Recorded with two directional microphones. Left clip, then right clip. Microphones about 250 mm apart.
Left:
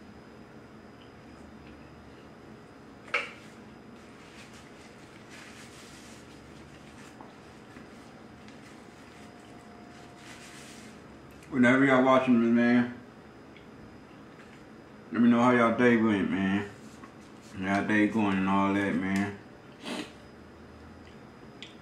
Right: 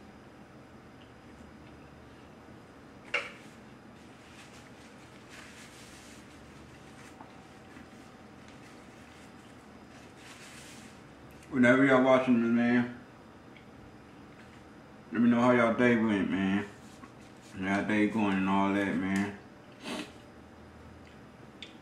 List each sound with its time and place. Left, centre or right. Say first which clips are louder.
11.5 s speech: left 1 dB; centre
15.2 s speech: left 2 dB; centre
19.8 s a sound: left 2 dB; centre